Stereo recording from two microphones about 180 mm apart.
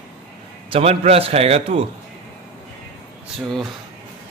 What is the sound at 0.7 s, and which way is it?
A man's voice, 35° right (ahead or behind).